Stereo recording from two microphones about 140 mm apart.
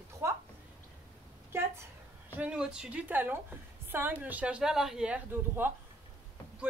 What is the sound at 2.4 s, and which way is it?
A woman's voice, 5° right (ahead or behind).